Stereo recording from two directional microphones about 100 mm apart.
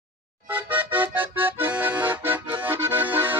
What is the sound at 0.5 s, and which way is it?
Accordion, 15° right (ahead or behind).